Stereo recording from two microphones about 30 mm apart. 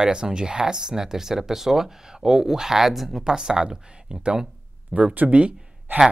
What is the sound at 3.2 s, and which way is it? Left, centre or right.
Speech, right.